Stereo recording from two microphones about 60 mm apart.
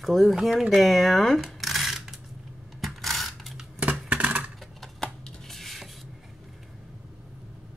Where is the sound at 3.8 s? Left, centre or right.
Right.